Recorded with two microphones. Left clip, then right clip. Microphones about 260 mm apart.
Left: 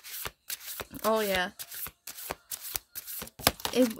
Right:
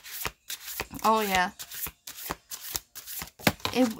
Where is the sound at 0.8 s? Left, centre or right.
Centre.